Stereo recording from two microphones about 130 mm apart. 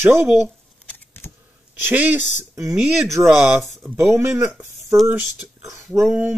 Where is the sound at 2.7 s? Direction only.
Centre (ahead or behind).